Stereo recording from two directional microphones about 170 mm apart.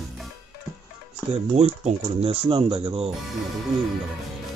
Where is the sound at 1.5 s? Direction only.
40° right (ahead or behind).